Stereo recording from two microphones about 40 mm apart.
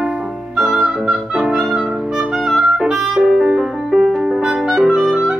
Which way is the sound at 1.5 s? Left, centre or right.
Right.